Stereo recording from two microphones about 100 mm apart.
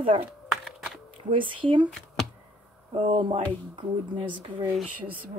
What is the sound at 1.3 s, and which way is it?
Speech, 60° right (ahead or behind).